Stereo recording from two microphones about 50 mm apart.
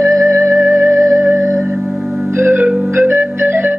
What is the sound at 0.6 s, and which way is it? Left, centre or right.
Music, right.